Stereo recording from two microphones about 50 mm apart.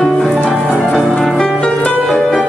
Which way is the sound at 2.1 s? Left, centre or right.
Centre.